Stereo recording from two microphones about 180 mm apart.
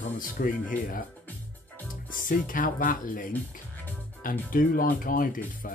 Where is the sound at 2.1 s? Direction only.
50° left (ahead or behind).